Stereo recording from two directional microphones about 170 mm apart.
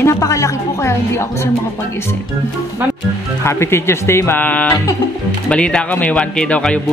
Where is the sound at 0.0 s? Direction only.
20° left (ahead or behind).